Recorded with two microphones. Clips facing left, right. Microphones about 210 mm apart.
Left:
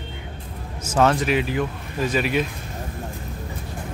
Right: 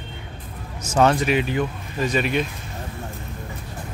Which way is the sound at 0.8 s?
5° left (ahead or behind).